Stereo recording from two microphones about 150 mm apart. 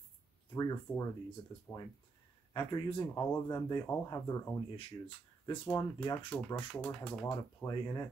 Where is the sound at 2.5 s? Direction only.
35° left (ahead or behind).